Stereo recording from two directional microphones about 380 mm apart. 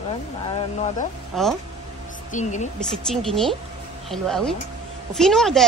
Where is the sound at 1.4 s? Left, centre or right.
Centre.